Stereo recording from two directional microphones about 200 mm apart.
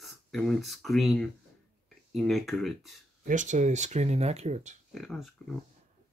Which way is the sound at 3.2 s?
40° right (ahead or behind).